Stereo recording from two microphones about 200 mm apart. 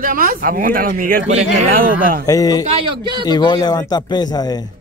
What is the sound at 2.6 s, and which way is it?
Speech, 30° right (ahead or behind).